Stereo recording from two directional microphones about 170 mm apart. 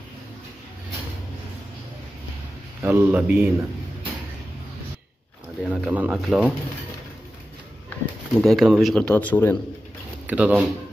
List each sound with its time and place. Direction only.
2.8 s a man's voice: 15° right (ahead or behind)
5.7 s speech: 5° right (ahead or behind)
8.4 s speech: centre (ahead or behind)
10.2 s speech: 10° right (ahead or behind)